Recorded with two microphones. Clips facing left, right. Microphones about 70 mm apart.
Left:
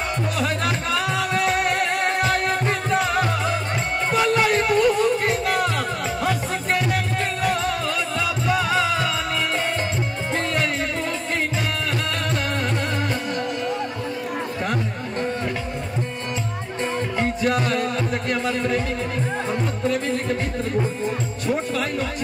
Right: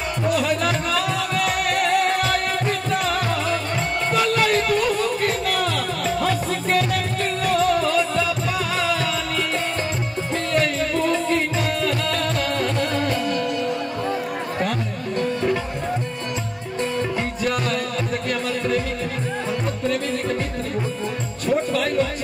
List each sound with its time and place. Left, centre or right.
0.3 s music: left
7.4 s music: left
10.5 s music: left
17.2 s music: left